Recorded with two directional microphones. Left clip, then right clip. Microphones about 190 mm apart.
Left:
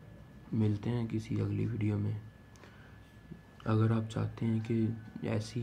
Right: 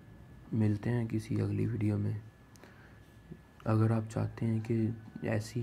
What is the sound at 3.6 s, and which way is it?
Speech, 20° right (ahead or behind).